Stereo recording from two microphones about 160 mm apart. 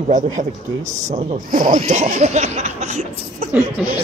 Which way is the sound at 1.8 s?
45° right (ahead or behind).